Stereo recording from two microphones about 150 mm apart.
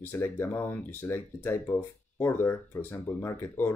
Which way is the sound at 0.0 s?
15° left (ahead or behind).